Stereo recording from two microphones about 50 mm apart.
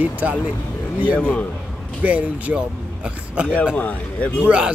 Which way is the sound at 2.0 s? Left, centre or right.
Right.